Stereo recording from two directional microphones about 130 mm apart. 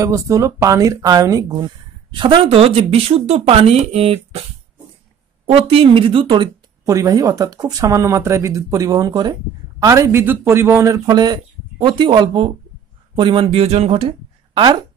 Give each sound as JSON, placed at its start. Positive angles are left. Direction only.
{"t": 0.0, "sound": "speech", "side_deg": -25}
{"t": 5.5, "sound": "speech", "side_deg": -45}
{"t": 6.9, "sound": "speech", "side_deg": -25}